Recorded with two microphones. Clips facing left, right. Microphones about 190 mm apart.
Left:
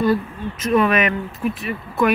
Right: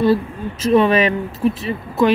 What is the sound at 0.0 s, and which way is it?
Speech, 30° right (ahead or behind).